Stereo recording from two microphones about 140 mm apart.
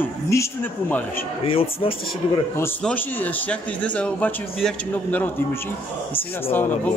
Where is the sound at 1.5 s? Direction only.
40° left (ahead or behind).